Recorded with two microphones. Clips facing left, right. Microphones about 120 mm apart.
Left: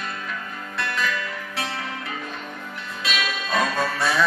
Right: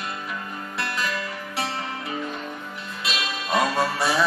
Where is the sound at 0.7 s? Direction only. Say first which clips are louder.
Left 2 dB; 30° right (ahead or behind).